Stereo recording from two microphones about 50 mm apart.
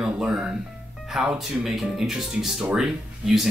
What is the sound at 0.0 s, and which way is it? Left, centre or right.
Music, centre.